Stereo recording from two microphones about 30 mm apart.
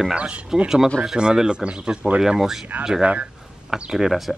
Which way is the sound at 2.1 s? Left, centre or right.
Centre.